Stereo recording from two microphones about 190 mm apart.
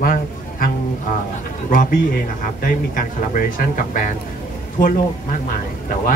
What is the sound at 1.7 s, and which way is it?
A man's voice, 45° left (ahead or behind).